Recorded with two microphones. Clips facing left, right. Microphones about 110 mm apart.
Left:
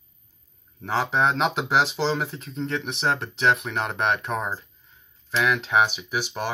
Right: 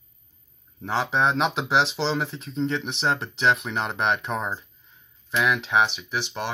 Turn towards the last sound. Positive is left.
turn(degrees=5)  # may be behind; listen again after turning